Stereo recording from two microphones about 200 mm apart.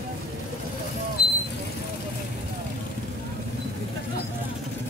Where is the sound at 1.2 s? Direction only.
50° left (ahead or behind).